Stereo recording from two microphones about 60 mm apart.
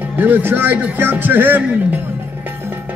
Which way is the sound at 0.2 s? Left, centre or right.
Right.